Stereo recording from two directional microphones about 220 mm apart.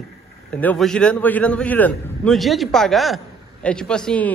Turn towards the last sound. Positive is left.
turn(degrees=5)  # may be behind; listen again after turning